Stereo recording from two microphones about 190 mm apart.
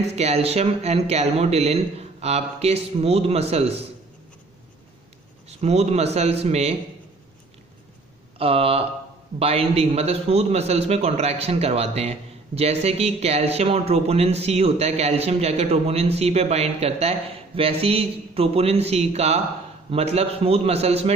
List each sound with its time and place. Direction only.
0.0 s a man's voice: 35° right (ahead or behind)
5.5 s a man's voice: 35° right (ahead or behind)
8.4 s a man's voice: 30° right (ahead or behind)